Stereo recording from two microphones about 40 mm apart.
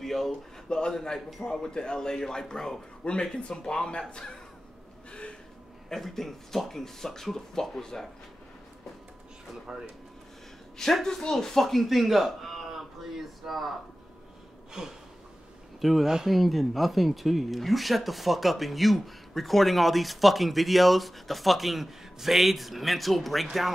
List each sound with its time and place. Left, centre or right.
0.0 s a sound: centre
0.3 s speech: centre
5.9 s speech: centre
9.7 s speech: centre
10.8 s speech: centre
11.1 s a man's voice: centre
14.7 s gasp: centre
15.8 s speech: centre